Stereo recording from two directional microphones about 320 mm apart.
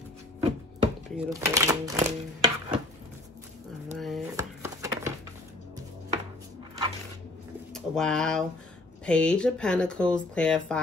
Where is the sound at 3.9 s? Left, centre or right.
Centre.